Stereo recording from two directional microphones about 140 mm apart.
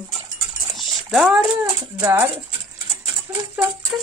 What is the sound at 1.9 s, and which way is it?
Speech, 20° right (ahead or behind).